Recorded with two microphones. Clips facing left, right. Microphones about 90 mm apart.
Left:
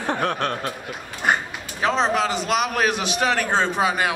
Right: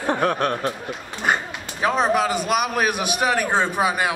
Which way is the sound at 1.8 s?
10° right (ahead or behind).